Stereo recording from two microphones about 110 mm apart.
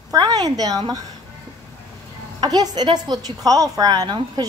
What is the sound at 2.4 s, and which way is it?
A woman's voice, 35° right (ahead or behind).